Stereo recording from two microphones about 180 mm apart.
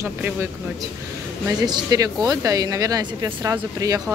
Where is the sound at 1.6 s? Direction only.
20° right (ahead or behind).